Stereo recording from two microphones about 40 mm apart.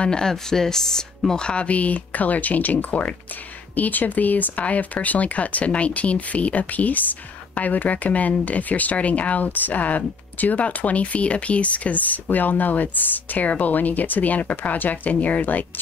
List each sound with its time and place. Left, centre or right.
0.0 s speech: centre
1.7 s speech: left